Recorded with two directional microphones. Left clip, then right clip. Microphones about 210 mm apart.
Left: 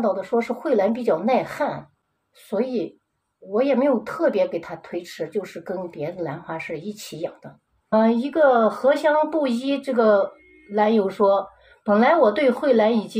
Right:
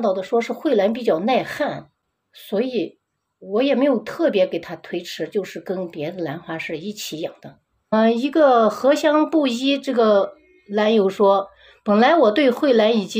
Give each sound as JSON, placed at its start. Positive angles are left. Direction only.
{"t": 0.0, "sound": "speech", "side_deg": -40}